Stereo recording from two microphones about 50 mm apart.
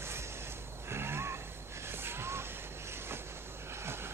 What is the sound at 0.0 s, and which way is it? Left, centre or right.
Snort, right.